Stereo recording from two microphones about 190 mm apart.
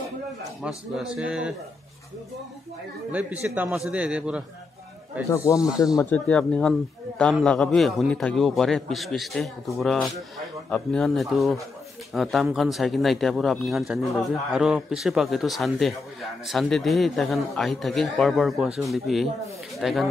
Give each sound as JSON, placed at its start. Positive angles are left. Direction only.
{"t": 0.6, "sound": "a man's voice", "side_deg": 0}
{"t": 3.1, "sound": "a man's voice", "side_deg": -10}
{"t": 5.3, "sound": "a man's voice", "side_deg": 15}